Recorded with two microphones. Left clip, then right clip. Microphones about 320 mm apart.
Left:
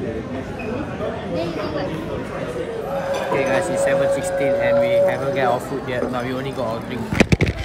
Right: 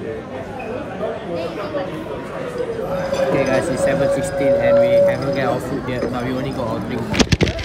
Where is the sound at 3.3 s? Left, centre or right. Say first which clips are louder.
Right 1 dB; centre.